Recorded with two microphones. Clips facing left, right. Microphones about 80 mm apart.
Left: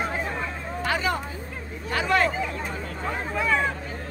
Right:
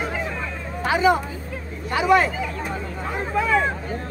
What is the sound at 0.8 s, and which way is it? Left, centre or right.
Speech, centre.